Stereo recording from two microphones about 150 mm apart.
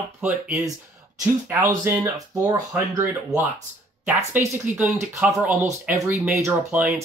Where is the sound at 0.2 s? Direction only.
15° right (ahead or behind).